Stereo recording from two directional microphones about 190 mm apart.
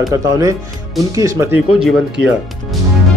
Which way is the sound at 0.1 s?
15° right (ahead or behind).